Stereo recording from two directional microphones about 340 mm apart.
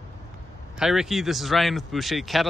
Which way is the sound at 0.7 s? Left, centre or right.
Centre.